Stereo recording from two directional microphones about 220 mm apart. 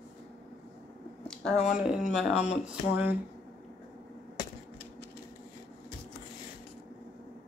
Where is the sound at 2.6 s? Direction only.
5° right (ahead or behind).